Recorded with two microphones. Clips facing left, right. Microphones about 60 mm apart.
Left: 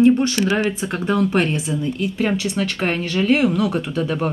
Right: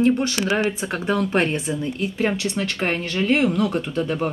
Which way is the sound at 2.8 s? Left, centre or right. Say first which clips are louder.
Left 2 dB; centre.